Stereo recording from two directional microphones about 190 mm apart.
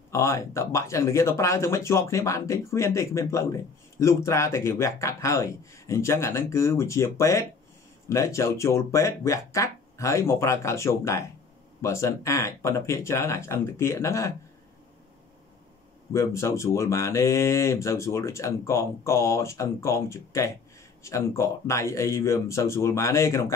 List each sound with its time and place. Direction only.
0.1 s speech: 15° left (ahead or behind)
16.1 s speech: 15° left (ahead or behind)